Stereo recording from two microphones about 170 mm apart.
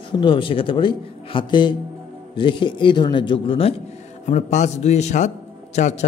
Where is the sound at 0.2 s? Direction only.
30° left (ahead or behind).